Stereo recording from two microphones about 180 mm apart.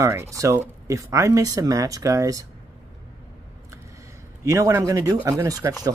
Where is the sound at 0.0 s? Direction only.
15° right (ahead or behind).